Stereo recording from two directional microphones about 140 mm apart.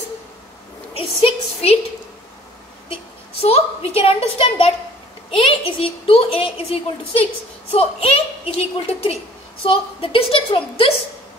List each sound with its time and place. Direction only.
0.9 s a woman's voice: 45° left (ahead or behind)
3.4 s a woman's voice: 45° left (ahead or behind)